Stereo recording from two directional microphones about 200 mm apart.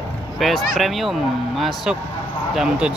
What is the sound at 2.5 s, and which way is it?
Speech, 5° right (ahead or behind).